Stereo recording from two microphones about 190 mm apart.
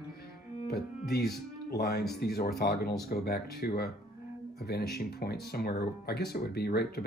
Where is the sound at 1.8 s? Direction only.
55° left (ahead or behind).